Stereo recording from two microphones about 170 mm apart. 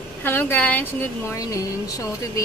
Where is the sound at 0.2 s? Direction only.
10° left (ahead or behind).